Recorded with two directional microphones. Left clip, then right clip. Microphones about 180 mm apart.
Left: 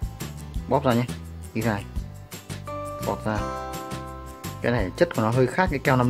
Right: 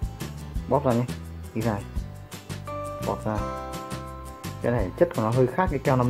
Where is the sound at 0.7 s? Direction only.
20° left (ahead or behind).